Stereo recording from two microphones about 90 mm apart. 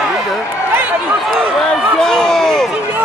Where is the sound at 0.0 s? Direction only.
5° right (ahead or behind).